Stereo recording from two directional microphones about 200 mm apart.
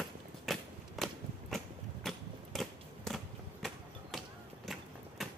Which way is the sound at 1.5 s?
Centre (ahead or behind).